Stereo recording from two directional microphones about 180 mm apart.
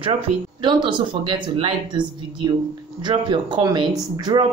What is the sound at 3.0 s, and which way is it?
Speech, 25° right (ahead or behind).